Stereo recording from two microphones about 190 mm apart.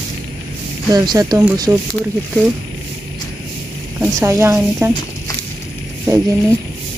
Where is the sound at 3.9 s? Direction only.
15° right (ahead or behind).